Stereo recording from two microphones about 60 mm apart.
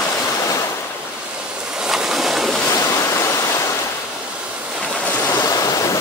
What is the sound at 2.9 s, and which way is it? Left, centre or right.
Waterfall, left.